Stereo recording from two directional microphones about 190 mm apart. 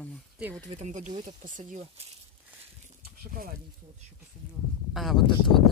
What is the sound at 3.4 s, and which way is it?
Speech, 50° right (ahead or behind).